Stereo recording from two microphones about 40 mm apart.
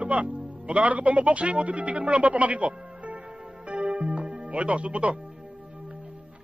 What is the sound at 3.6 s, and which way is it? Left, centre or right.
Music, right.